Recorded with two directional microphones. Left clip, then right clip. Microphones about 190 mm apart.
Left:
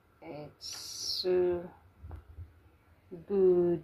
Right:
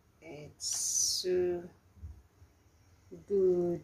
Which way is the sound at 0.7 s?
30° right (ahead or behind).